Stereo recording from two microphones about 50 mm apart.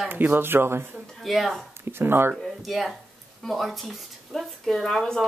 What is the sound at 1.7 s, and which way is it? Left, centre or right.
Speech, right.